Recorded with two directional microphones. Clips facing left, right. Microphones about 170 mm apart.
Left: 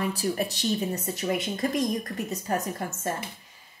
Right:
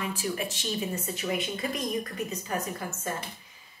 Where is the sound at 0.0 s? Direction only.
40° left (ahead or behind).